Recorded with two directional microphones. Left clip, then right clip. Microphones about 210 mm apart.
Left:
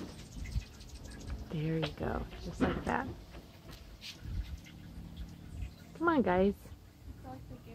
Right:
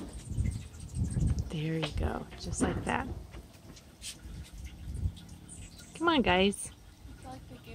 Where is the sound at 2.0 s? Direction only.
10° right (ahead or behind).